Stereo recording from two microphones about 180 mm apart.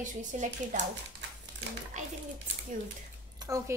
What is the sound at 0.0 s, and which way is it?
Speech, 45° right (ahead or behind).